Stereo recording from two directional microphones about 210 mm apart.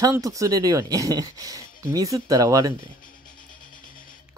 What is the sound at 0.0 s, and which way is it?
Speech, 15° right (ahead or behind).